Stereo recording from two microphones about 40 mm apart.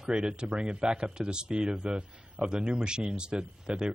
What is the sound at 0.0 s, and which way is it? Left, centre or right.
Speech, centre.